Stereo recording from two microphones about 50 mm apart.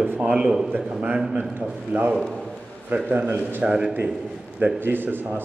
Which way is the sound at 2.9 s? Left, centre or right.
Right.